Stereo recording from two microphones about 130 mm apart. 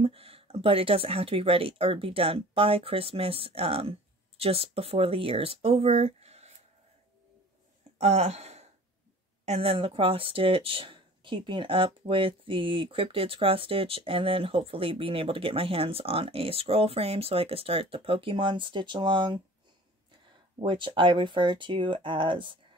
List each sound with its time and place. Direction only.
0.0 s speech: 45° right (ahead or behind)
8.0 s speech: 55° right (ahead or behind); by 19.4 s 40° right (ahead or behind)
20.6 s speech: 40° right (ahead or behind)